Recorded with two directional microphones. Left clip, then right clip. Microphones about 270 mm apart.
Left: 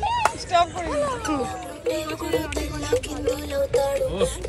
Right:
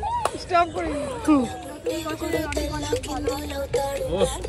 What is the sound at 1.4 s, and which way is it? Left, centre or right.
Music, centre.